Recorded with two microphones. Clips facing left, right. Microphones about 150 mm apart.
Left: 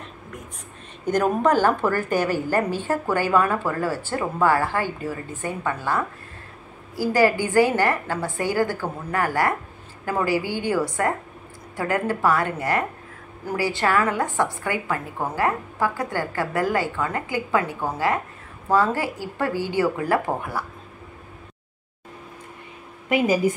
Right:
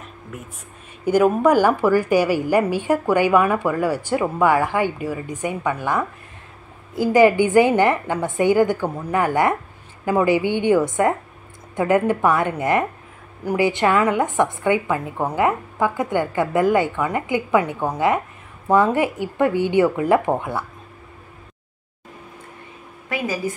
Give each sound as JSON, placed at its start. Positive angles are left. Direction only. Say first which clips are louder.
{"t": 1.0, "sound": "a woman's voice", "louder": "right 4 dB", "side_deg": -10}
{"t": 23.0, "sound": "a woman's voice", "louder": "left 5 dB", "side_deg": 20}